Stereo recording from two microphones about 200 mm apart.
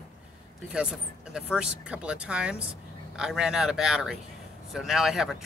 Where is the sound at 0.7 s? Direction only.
5° right (ahead or behind).